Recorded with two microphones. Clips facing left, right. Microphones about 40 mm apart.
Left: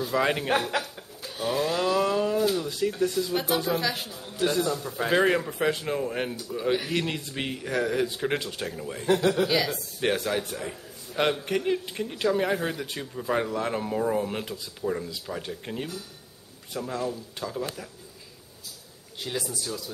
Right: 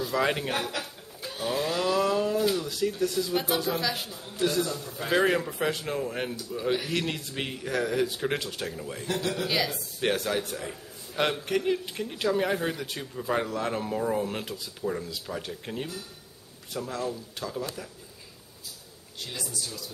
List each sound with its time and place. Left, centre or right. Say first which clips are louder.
0.0 s a man's voice: left 1 dB; centre
4.8 s speech: left 6 dB; left
5.1 s a man's voice: left 1 dB; centre
9.0 s speech: left 7 dB; left
9.5 s a man's voice: left 3 dB; centre
19.1 s speech: left 5 dB; left